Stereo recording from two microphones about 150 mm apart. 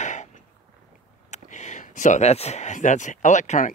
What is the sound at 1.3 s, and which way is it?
Speech, 50° left (ahead or behind).